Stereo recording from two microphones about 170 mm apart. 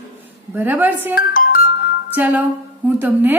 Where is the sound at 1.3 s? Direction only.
55° left (ahead or behind).